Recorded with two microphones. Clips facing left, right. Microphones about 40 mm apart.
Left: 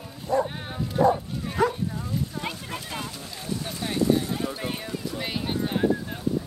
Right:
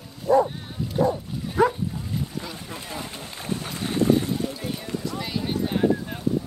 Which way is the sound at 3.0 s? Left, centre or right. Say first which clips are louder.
Right 1 dB; right.